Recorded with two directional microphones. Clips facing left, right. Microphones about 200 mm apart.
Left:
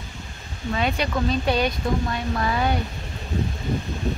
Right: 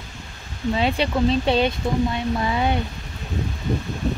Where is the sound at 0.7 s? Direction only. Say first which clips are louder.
Right 2 dB; 30° right (ahead or behind).